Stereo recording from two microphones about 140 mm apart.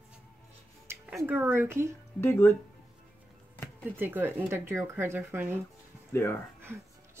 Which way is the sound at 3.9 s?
15° right (ahead or behind).